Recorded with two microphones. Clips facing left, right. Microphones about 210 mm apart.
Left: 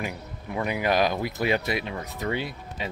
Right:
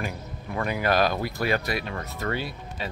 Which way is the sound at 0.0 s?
10° left (ahead or behind).